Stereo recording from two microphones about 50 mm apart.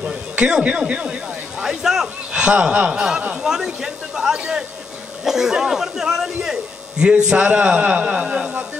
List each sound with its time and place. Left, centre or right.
0.4 s a man's voice: centre
1.6 s a sound: centre
2.4 s speech: right
3.4 s a man's voice: centre
7.2 s speech: right